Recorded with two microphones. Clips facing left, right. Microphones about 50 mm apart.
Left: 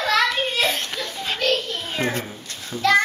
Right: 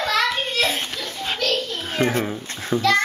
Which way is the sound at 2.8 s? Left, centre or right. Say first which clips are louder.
Left 1 dB; centre.